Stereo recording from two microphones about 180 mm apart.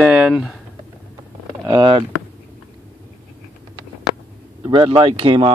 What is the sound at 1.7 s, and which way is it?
Speech, 25° right (ahead or behind).